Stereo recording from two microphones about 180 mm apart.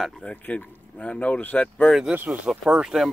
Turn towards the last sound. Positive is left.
turn(degrees=0)  # may be behind; listen again after turning